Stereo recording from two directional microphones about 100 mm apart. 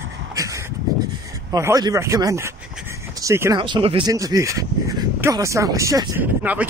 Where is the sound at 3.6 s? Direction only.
60° right (ahead or behind).